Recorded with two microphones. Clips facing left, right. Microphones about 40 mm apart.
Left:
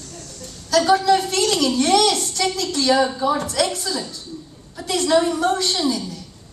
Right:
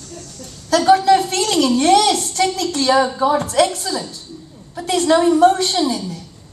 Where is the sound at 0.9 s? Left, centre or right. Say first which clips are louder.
Right 6 dB; right.